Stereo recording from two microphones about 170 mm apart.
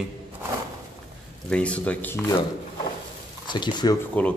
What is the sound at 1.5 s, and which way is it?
Speech, 10° left (ahead or behind).